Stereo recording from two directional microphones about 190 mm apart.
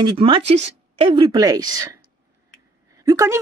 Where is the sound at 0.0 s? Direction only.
25° right (ahead or behind).